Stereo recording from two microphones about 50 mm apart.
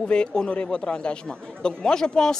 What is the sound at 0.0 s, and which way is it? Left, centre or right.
A woman's voice, centre.